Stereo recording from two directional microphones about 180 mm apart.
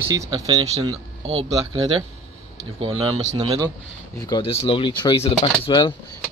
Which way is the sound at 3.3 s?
25° right (ahead or behind).